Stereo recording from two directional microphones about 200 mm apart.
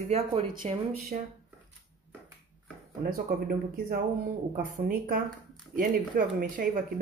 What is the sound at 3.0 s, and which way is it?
Speech, 45° right (ahead or behind).